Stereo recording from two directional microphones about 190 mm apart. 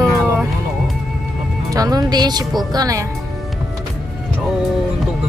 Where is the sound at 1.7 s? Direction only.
20° right (ahead or behind).